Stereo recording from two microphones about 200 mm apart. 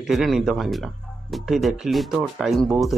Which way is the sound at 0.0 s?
Centre (ahead or behind).